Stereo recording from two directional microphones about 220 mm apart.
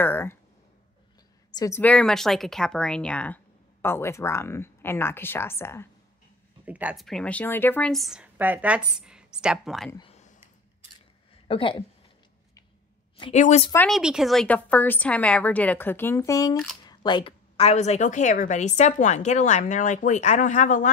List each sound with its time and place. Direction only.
0.0 s a sound: 10° left (ahead or behind)
1.5 s a woman's voice: 15° left (ahead or behind)
6.6 s speech: 5° right (ahead or behind)
9.8 s speech: 20° left (ahead or behind)
11.4 s a woman's voice: 25° left (ahead or behind)
13.2 s a woman's voice: 30° left (ahead or behind)
13.8 s a woman's voice: centre (ahead or behind); by 20.9 s 35° left (ahead or behind)